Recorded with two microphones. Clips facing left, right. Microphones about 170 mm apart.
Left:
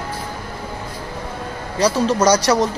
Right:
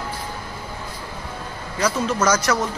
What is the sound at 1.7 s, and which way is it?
Speech, 35° left (ahead or behind).